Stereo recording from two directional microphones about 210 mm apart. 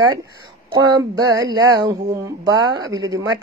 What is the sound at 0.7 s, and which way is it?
Speech, 20° right (ahead or behind).